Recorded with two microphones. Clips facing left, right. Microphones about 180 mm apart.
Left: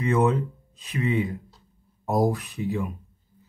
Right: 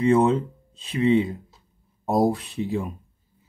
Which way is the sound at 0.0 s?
30° right (ahead or behind).